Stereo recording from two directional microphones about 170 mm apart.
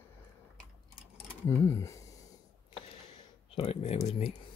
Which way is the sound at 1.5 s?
15° left (ahead or behind).